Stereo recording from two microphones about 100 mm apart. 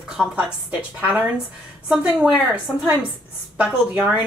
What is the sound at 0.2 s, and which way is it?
A woman's voice, 10° right (ahead or behind).